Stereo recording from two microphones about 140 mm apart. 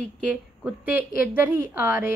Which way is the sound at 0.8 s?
15° right (ahead or behind).